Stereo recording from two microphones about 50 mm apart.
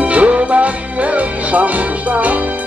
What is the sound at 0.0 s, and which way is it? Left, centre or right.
Music, right.